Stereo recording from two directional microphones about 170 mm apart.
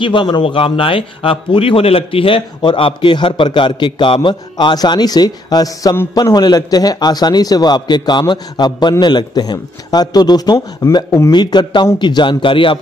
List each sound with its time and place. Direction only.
0.0 s a man's voice: 30° left (ahead or behind)